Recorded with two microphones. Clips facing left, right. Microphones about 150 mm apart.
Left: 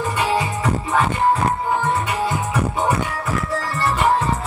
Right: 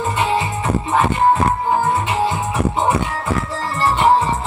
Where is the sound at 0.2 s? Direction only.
20° right (ahead or behind).